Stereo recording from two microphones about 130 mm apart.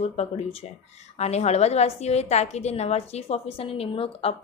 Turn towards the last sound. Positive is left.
turn(degrees=50)  # may be behind; listen again after turning